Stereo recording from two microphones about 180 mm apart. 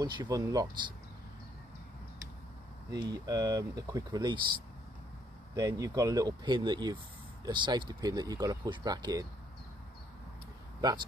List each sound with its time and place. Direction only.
0.0 s speech: 20° right (ahead or behind)
2.9 s speech: 20° right (ahead or behind)
5.6 s speech: 20° right (ahead or behind)
10.8 s speech: 20° right (ahead or behind)